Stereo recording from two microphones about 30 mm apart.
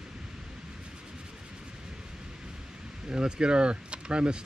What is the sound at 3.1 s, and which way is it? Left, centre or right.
Speech, right.